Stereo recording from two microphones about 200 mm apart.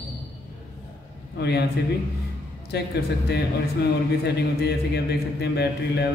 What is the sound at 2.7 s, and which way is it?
A man's voice, 55° left (ahead or behind).